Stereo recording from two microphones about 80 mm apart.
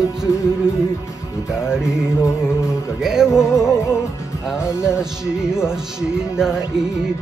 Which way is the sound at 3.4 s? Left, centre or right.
Left.